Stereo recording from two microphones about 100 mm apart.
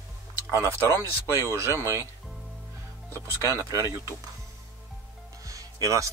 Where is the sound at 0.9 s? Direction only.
30° left (ahead or behind).